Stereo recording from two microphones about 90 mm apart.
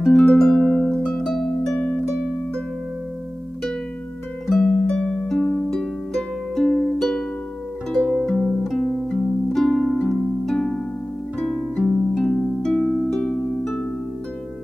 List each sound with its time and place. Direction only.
0.2 s harp: 10° left (ahead or behind)
1.8 s music: 20° left (ahead or behind)
4.5 s harp: 10° left (ahead or behind)
11.3 s music: 5° left (ahead or behind)
12.4 s harp: 10° left (ahead or behind)